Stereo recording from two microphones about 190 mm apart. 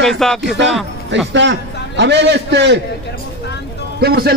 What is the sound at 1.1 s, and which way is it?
A man's voice, 70° right (ahead or behind).